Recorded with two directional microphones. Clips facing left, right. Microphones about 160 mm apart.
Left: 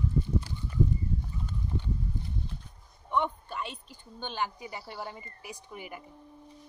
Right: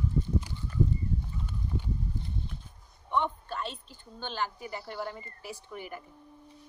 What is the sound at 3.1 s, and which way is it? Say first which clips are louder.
A woman's voice: even; 10° left (ahead or behind).